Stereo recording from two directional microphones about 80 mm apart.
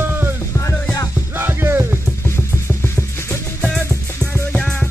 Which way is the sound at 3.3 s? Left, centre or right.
Centre.